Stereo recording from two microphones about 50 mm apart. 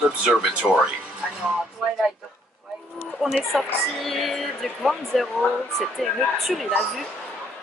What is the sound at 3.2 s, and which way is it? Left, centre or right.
Speech, centre.